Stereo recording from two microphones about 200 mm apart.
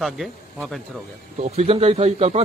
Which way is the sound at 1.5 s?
30° right (ahead or behind).